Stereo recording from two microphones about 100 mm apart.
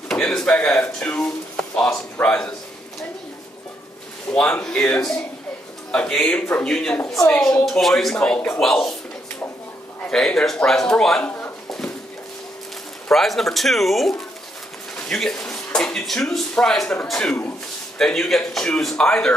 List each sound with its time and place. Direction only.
0.1 s speech: 10° left (ahead or behind)
4.3 s speech: 15° left (ahead or behind)
10.0 s speech: 10° left (ahead or behind)
13.1 s speech: centre (ahead or behind)